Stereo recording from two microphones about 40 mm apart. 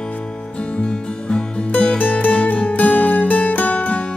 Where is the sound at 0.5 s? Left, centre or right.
Left.